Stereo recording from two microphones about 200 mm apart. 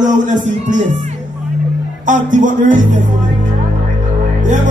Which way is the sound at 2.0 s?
40° right (ahead or behind).